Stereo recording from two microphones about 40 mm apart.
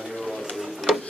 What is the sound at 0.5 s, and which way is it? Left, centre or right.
Tick-tock, centre.